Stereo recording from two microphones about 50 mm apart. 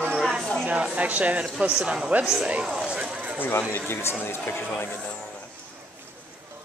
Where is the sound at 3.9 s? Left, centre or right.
Left.